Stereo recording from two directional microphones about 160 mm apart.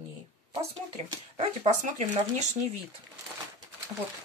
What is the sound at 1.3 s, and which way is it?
Speech, 50° right (ahead or behind).